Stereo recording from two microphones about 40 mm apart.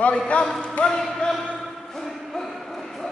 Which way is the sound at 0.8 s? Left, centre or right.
Left.